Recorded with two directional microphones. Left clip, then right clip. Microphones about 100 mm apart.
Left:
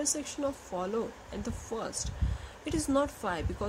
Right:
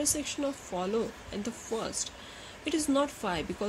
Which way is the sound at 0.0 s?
15° right (ahead or behind).